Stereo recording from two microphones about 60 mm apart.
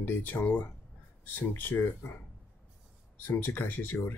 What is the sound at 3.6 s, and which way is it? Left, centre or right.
Speech, left.